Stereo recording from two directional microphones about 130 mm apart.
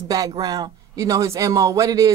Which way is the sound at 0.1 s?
30° right (ahead or behind).